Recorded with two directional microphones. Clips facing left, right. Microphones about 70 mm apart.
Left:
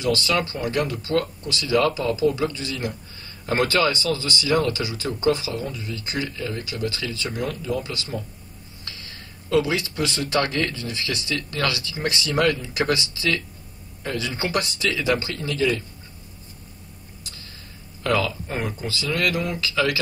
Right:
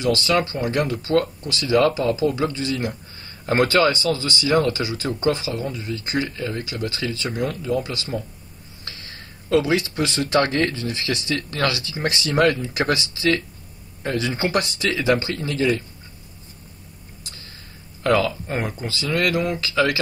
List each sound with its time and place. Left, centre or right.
0.0 s speech: right
9.5 s speech: right
18.0 s speech: right